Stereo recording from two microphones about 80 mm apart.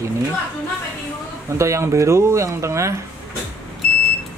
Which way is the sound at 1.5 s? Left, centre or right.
Right.